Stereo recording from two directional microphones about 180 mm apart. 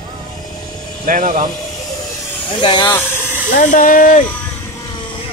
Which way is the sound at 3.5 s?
50° left (ahead or behind).